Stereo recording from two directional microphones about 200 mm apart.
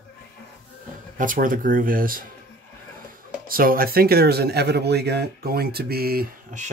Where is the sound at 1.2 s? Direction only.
45° right (ahead or behind).